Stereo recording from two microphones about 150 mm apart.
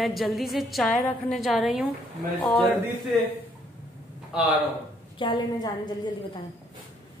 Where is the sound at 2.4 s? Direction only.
10° left (ahead or behind).